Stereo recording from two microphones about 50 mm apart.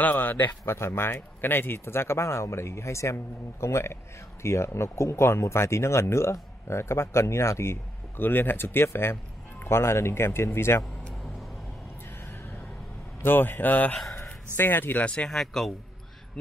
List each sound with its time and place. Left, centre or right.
0.0 s a man's voice: left
0.7 s speech: left
3.6 s speech: left
8.2 s speech: left
13.2 s a man's voice: left
15.0 s speech: left
15.2 s speech: centre